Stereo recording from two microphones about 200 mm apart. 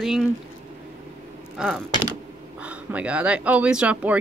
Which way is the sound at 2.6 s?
5° right (ahead or behind).